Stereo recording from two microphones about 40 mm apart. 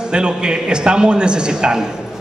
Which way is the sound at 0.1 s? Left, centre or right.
Right.